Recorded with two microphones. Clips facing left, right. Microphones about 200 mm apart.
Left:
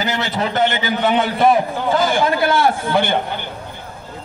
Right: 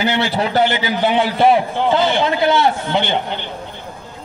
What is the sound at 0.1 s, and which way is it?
A man's voice, 30° right (ahead or behind).